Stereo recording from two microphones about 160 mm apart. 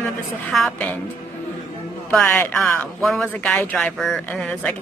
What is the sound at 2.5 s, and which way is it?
Speech, centre (ahead or behind).